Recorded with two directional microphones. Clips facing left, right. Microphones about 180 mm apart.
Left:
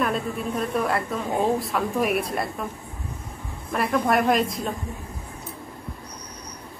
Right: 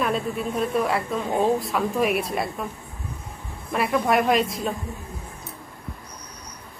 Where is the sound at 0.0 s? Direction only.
Centre (ahead or behind).